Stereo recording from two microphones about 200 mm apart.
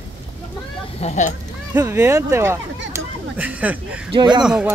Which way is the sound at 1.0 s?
35° left (ahead or behind).